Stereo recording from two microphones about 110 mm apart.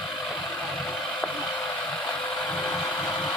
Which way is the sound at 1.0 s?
15° left (ahead or behind).